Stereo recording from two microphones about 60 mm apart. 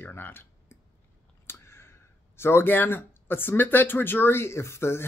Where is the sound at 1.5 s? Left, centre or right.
Left.